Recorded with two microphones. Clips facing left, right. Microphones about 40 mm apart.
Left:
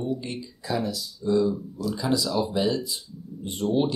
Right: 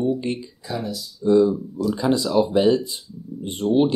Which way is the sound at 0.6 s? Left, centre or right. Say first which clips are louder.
Left 1 dB; centre.